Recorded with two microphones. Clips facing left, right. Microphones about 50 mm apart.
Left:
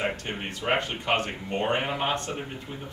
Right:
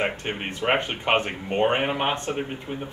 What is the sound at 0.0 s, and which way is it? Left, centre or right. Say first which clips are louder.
Speech: right 3 dB; right.